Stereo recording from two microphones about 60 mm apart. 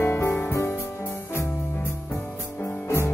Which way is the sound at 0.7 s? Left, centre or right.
Left.